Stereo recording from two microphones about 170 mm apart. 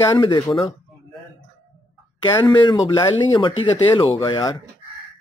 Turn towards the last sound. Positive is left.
turn(degrees=25)  # may be behind; listen again after turning